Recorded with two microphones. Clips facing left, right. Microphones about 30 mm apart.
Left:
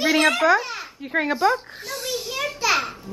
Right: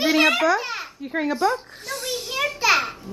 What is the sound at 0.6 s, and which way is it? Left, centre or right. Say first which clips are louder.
Babbling: right 2 dB; centre.